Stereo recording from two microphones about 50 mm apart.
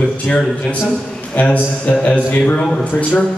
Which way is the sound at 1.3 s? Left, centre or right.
Left.